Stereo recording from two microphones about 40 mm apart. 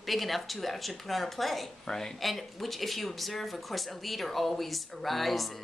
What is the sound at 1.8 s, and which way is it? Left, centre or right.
Speech, centre.